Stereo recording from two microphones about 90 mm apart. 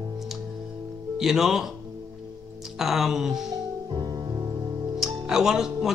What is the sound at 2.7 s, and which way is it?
Speech, 5° right (ahead or behind).